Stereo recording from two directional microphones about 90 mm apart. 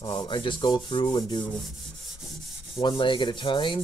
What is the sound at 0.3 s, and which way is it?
Rub, 65° left (ahead or behind).